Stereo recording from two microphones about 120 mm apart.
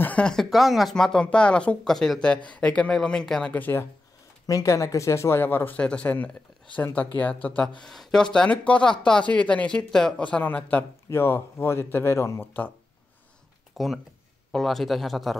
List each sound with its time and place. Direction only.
0.0 s speech: 10° left (ahead or behind)
4.5 s speech: 30° left (ahead or behind)
13.8 s speech: centre (ahead or behind)